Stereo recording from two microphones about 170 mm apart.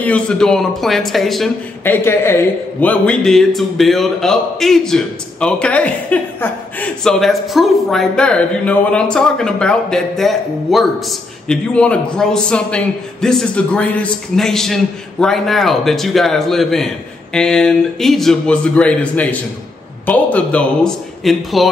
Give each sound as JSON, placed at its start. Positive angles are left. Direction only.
{"t": 0.0, "sound": "a man's voice", "side_deg": 5}
{"t": 1.9, "sound": "a man's voice", "side_deg": 15}